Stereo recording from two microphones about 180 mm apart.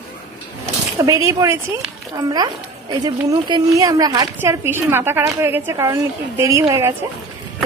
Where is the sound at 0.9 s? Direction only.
15° right (ahead or behind).